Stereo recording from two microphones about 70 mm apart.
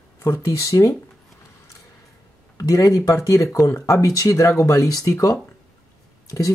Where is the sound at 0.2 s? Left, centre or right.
Left.